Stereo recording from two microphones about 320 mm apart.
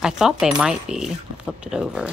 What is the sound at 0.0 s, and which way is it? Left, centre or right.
Speech, centre.